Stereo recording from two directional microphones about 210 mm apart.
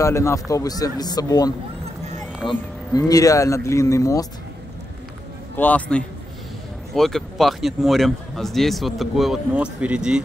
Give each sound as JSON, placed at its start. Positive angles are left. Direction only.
{"t": 0.0, "sound": "a man's voice", "side_deg": 15}
{"t": 5.6, "sound": "a man's voice", "side_deg": 5}